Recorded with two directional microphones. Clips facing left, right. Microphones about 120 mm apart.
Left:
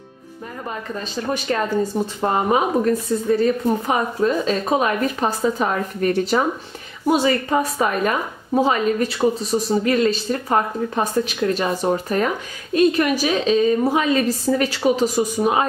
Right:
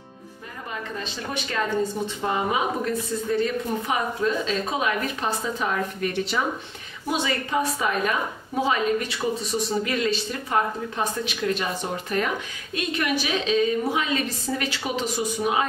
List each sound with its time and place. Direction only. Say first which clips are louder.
0.7 s a woman's voice: left 3 dB; 40° left (ahead or behind)